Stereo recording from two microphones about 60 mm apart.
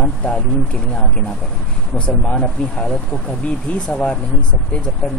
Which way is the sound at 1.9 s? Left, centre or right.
Centre.